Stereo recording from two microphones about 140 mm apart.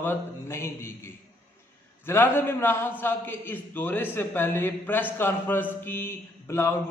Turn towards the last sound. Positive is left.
turn(degrees=20)  # may be behind; listen again after turning